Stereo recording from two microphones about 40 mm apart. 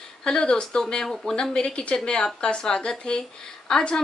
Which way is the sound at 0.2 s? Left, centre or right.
Centre.